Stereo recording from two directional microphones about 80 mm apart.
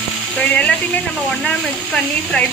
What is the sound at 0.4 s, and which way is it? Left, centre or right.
Speech, centre.